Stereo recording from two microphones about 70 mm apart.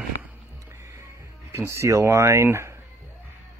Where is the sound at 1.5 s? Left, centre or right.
Right.